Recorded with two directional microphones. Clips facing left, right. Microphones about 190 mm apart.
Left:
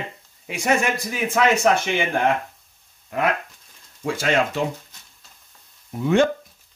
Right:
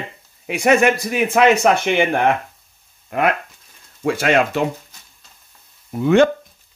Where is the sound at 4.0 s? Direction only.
65° right (ahead or behind).